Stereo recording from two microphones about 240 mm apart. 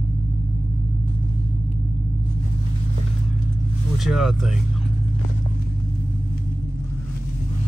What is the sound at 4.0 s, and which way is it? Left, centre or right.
Speech, centre.